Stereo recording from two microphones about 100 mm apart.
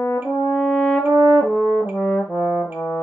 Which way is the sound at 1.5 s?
15° left (ahead or behind).